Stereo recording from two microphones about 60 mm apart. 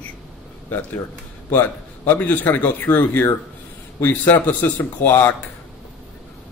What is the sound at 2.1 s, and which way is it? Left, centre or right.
Speech, left.